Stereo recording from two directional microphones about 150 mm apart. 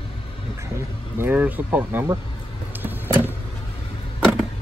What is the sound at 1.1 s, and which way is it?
Speech, 10° right (ahead or behind).